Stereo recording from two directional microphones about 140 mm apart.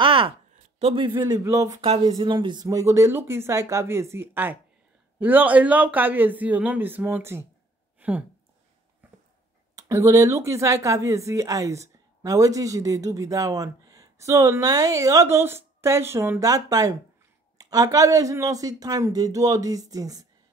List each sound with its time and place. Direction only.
0.0 s a sound: 40° right (ahead or behind)
0.7 s a woman's voice: 40° right (ahead or behind); by 1.8 s 20° right (ahead or behind)
1.8 s speech: 45° right (ahead or behind)
2.1 s a woman's voice: 35° right (ahead or behind); by 8.2 s 10° right (ahead or behind)
9.8 s a woman's voice: 20° right (ahead or behind)